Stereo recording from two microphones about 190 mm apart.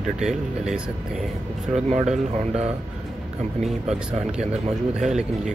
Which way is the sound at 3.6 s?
5° right (ahead or behind).